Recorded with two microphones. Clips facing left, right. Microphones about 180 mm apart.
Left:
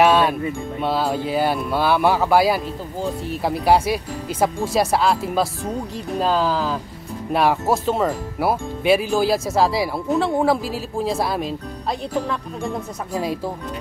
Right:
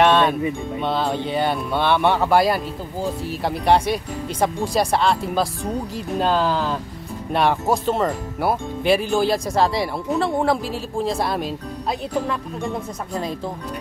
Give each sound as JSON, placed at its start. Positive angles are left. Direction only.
{"t": 0.0, "sound": "music", "side_deg": 5}
{"t": 0.7, "sound": "speech", "side_deg": 5}